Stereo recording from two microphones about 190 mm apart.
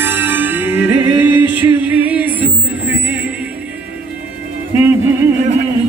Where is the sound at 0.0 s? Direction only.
10° right (ahead or behind).